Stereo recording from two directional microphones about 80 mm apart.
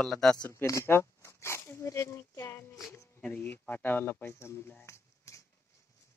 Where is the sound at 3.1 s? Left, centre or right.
Centre; by 5.4 s left.